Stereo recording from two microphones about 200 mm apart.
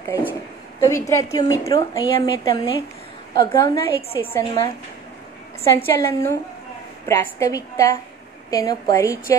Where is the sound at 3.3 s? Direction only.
20° left (ahead or behind).